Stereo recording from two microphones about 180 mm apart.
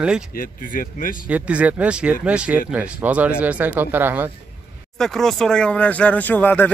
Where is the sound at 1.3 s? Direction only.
10° right (ahead or behind).